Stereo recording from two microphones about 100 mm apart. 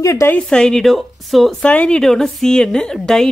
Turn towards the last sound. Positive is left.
turn(degrees=5)  # may be behind; listen again after turning